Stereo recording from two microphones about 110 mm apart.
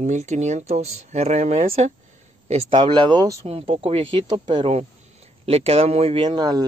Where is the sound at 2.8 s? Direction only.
50° right (ahead or behind).